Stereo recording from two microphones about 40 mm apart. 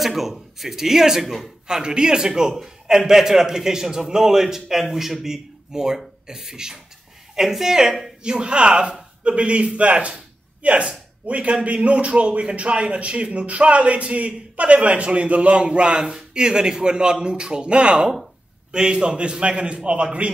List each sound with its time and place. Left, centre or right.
0.0 s a man's voice: centre
1.7 s a man's voice: centre
8.2 s speech: right